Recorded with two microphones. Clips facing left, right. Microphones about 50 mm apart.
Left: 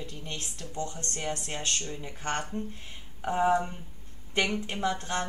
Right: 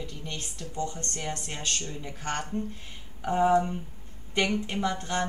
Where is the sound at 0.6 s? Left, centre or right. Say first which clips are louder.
Right 4 dB; left.